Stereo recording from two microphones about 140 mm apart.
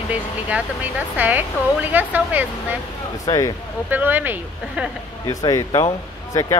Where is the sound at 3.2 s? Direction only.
25° left (ahead or behind).